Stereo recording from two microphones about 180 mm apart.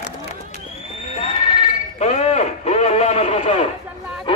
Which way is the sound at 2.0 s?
35° left (ahead or behind).